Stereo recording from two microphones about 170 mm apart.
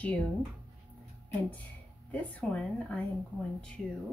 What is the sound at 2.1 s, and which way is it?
Speech, 10° left (ahead or behind).